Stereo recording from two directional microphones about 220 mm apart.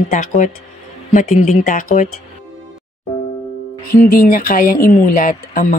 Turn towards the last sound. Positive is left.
turn(degrees=40)  # may be behind; listen again after turning